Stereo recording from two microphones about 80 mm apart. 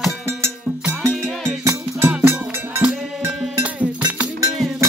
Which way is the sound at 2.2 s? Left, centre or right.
Right.